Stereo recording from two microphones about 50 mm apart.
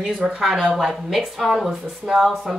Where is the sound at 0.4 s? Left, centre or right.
Centre.